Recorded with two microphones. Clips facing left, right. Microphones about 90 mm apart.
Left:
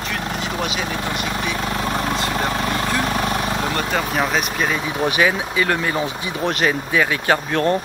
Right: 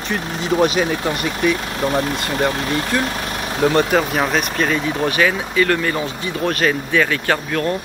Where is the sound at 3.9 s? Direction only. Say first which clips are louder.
Right 3 dB; 5° right (ahead or behind).